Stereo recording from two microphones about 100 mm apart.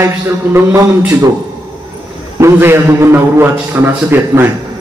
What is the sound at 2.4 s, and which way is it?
A man's voice, 25° right (ahead or behind).